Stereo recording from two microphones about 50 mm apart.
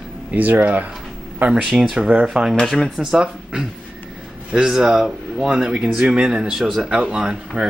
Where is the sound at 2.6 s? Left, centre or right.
Centre.